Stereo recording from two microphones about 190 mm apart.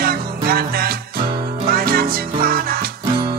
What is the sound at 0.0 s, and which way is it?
Music, 55° right (ahead or behind).